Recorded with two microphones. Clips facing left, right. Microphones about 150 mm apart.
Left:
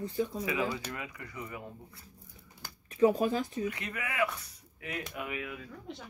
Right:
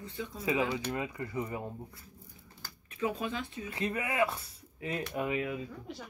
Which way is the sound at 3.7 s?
30° right (ahead or behind).